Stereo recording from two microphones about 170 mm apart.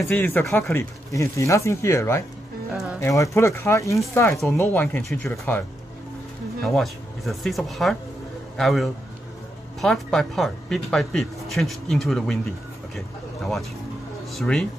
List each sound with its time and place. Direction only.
0.0 s speech: 10° left (ahead or behind)
2.7 s music: centre (ahead or behind)
3.0 s speech: 15° left (ahead or behind)
6.6 s speech: centre (ahead or behind)